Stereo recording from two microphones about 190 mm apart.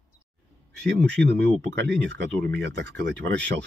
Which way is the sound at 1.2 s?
65° right (ahead or behind).